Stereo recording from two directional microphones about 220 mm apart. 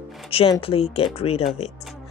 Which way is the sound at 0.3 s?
25° left (ahead or behind).